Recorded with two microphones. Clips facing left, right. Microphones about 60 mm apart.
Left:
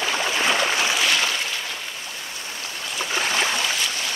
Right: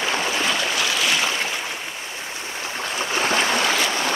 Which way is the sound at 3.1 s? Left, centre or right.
Right.